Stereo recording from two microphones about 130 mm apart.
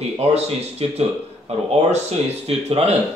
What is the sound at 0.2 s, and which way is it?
Speech, 55° right (ahead or behind).